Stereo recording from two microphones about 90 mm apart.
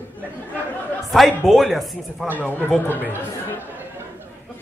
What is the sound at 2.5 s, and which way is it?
Speech, 20° left (ahead or behind).